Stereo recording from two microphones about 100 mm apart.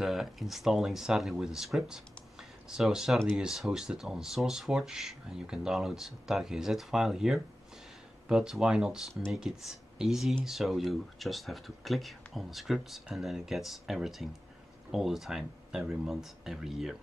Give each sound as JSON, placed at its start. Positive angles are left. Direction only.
{"t": 0.0, "sound": "speech", "side_deg": -5}